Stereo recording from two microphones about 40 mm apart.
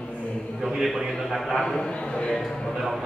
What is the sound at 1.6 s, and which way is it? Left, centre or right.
Speech, centre.